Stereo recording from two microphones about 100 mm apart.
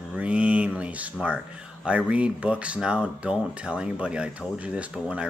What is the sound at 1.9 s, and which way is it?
Speech, 10° right (ahead or behind).